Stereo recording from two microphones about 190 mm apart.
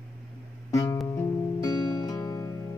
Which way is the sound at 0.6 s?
15° left (ahead or behind).